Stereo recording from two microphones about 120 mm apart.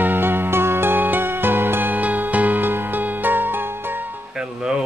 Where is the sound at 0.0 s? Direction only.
15° right (ahead or behind).